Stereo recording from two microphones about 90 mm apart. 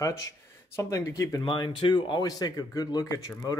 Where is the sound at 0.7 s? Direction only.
35° left (ahead or behind).